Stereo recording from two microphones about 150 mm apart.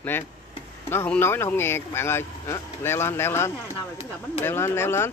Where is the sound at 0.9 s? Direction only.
15° left (ahead or behind).